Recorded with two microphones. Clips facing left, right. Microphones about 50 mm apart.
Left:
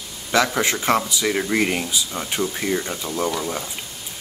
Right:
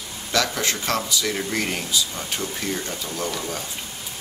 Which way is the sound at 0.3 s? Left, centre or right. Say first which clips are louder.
Left 4 dB; left.